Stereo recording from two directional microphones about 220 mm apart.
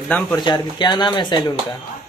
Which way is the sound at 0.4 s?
20° left (ahead or behind).